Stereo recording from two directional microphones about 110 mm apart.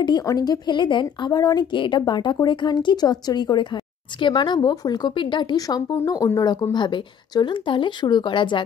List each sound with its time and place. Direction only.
0.2 s a woman's voice: 35° left (ahead or behind)
6.0 s a woman's voice: 30° left (ahead or behind); by 8.6 s 45° left (ahead or behind)